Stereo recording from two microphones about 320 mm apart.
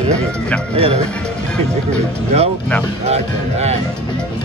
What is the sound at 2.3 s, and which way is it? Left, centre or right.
Speech, centre.